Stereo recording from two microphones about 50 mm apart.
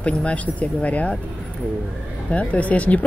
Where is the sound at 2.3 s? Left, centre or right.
Left.